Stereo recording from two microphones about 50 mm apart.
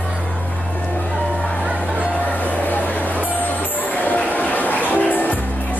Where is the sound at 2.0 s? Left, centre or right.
Left.